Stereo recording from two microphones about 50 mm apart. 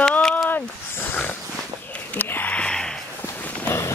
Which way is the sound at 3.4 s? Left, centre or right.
Left.